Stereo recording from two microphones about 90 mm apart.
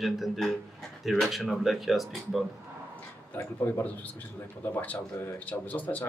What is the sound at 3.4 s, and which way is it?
Speech, 25° left (ahead or behind).